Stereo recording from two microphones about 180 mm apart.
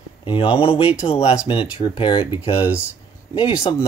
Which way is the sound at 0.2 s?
30° left (ahead or behind).